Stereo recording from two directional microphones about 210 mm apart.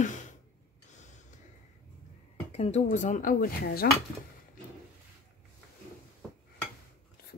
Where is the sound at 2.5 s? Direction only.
30° left (ahead or behind); by 3.9 s 45° left (ahead or behind).